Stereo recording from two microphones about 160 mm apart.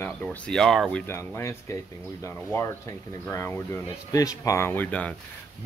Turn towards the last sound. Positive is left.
turn(degrees=10)  # may be behind; listen again after turning